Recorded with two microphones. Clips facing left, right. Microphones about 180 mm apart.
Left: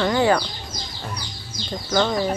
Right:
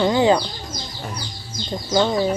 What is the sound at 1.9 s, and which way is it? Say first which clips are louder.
Speech: right 2 dB; 20° right (ahead or behind).